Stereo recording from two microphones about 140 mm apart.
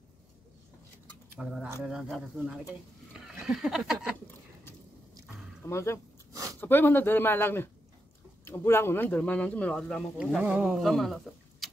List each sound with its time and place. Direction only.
1.3 s speech: 10° right (ahead or behind)
5.7 s speech: 20° left (ahead or behind)
10.4 s speech: 10° right (ahead or behind)